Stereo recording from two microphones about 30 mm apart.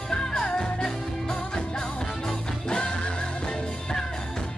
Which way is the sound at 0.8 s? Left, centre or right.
Left.